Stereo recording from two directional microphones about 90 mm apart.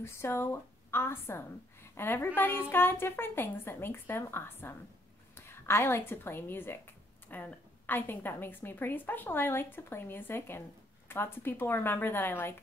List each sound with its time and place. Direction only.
0.0 s a woman's voice: 30° left (ahead or behind)